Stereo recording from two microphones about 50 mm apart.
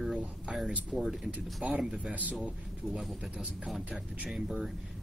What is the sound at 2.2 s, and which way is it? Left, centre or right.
Speech, right.